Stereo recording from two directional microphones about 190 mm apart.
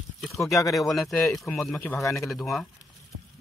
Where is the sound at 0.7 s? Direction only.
Centre (ahead or behind).